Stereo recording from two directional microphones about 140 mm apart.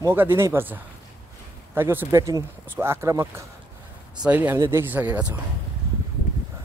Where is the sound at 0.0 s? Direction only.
15° right (ahead or behind).